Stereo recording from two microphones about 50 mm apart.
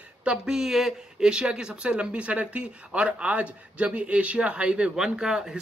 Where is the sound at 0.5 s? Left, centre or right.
Centre.